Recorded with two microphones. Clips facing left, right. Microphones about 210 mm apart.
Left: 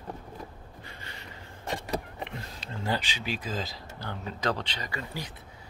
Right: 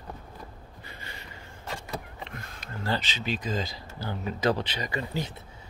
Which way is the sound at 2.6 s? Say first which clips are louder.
Right 1 dB; 25° left (ahead or behind).